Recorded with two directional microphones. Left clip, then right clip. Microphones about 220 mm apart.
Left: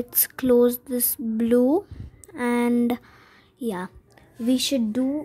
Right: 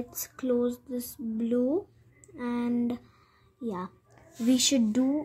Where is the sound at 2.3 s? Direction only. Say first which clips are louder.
Left 9 dB; 40° left (ahead or behind).